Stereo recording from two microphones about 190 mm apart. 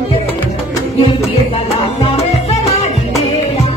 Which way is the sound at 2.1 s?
35° left (ahead or behind).